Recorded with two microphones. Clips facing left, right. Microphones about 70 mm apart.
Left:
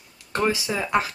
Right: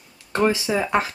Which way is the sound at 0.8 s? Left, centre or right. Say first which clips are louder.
Even; right.